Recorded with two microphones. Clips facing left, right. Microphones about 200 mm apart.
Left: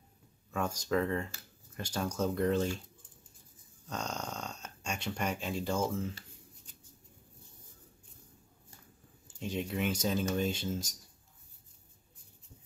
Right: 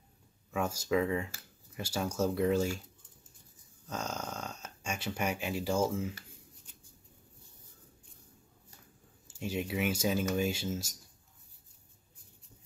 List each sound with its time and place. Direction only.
0.5 s speech: 5° right (ahead or behind)
3.8 s speech: centre (ahead or behind)
9.4 s speech: 5° right (ahead or behind)